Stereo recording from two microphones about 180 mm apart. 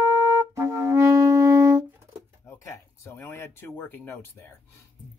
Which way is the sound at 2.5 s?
15° left (ahead or behind).